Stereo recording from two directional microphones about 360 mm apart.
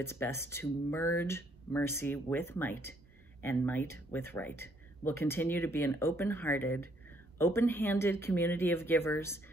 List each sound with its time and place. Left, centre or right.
0.0 s speech: centre